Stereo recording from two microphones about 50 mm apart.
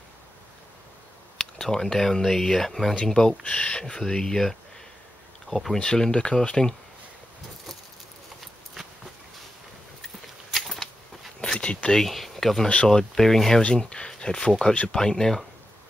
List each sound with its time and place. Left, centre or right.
1.4 s speech: centre
5.8 s speech: centre
10.0 s a sound: centre
11.4 s a sound: centre
12.0 s speech: centre
13.6 s speech: centre